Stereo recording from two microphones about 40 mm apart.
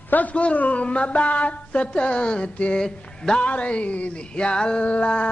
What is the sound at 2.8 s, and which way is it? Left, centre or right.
Speech, centre.